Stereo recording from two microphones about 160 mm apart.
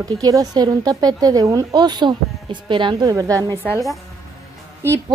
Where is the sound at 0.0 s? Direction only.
25° right (ahead or behind).